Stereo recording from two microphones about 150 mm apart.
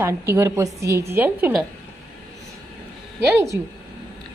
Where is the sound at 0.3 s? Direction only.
15° right (ahead or behind).